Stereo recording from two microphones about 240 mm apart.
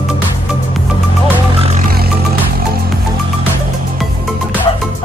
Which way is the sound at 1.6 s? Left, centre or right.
Right.